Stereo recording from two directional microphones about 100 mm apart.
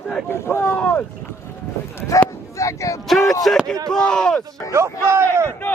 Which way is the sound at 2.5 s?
30° left (ahead or behind).